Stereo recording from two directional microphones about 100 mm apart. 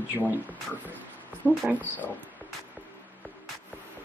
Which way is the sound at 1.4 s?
25° right (ahead or behind).